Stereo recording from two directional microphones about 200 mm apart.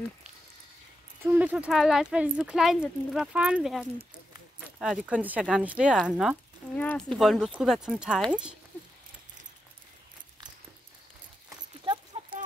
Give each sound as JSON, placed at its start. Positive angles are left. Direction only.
{"t": 1.2, "sound": "speech", "side_deg": -10}
{"t": 11.8, "sound": "horse", "side_deg": -25}